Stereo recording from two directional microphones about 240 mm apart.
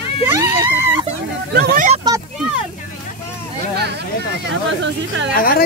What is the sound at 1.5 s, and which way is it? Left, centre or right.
Speech, right.